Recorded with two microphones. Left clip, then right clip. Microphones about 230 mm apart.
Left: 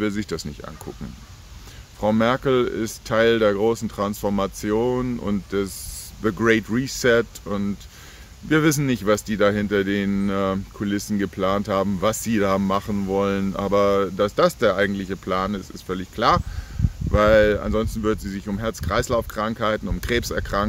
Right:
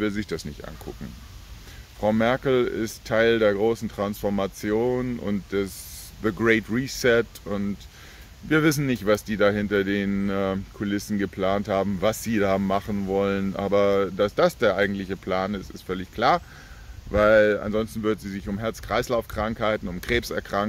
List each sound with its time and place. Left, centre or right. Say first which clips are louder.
0.0 s speech: left 2 dB; centre
2.0 s speech: left 2 dB; centre